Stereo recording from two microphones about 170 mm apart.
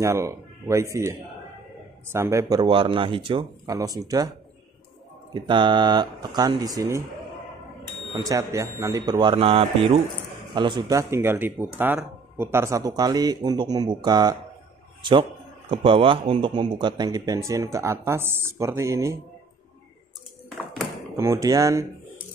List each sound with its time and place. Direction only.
0.0 s speech: 15° right (ahead or behind)
5.3 s speech: 25° right (ahead or behind)
8.1 s speech: 20° right (ahead or behind)
11.0 s a man's voice: 15° right (ahead or behind)
21.2 s speech: 20° right (ahead or behind)